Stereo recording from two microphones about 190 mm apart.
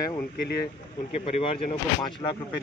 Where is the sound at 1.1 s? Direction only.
30° left (ahead or behind).